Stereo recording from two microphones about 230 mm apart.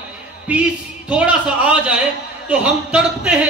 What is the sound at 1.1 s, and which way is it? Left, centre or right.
Speech, centre.